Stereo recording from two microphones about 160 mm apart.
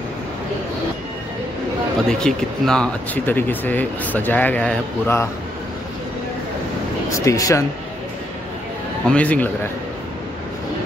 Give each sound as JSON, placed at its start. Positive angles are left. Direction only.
{"t": 2.0, "sound": "speech", "side_deg": 5}
{"t": 7.1, "sound": "speech", "side_deg": 20}
{"t": 9.1, "sound": "speech", "side_deg": 10}